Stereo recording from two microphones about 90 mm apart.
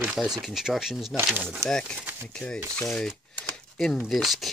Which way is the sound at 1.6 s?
5° left (ahead or behind).